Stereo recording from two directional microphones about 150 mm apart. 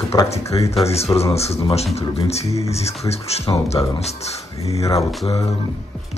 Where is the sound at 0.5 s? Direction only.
35° left (ahead or behind).